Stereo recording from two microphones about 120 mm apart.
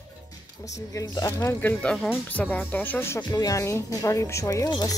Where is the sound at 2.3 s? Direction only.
15° left (ahead or behind).